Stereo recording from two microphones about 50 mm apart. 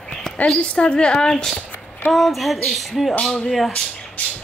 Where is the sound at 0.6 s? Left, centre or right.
Left.